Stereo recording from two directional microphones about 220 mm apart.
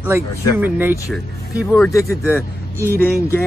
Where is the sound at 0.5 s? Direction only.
10° right (ahead or behind).